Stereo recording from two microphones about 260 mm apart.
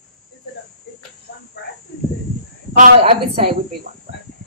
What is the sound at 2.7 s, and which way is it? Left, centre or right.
Speech, right.